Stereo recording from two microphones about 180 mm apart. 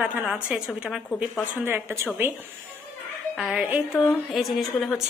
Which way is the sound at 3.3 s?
5° right (ahead or behind).